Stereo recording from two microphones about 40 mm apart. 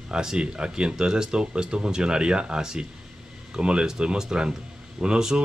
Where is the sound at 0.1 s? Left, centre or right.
Centre.